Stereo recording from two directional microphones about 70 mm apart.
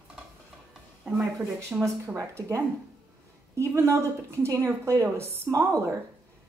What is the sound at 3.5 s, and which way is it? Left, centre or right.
A woman's voice, right.